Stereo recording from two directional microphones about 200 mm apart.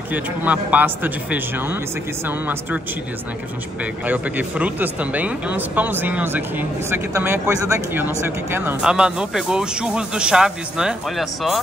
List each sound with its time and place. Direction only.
0.1 s speech: 10° right (ahead or behind)
3.8 s speech: 10° right (ahead or behind)